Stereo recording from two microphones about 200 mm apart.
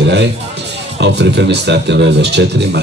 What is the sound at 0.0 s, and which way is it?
Speech, 60° right (ahead or behind).